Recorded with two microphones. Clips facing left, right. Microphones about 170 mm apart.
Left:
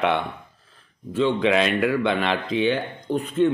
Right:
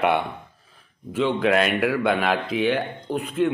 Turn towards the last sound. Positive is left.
turn(degrees=-10)  # may be behind; listen again after turning